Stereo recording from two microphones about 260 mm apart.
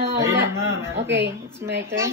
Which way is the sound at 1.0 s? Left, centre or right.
Right.